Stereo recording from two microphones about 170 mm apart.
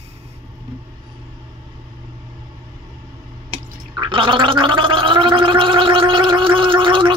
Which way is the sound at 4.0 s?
30° right (ahead or behind).